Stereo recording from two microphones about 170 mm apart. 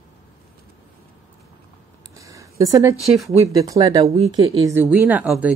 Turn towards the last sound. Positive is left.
turn(degrees=-10)  # may be behind; listen again after turning